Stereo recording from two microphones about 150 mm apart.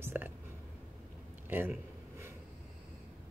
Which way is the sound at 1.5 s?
15° right (ahead or behind).